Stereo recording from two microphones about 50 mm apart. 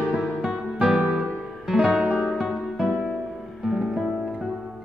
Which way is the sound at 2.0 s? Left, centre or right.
Right.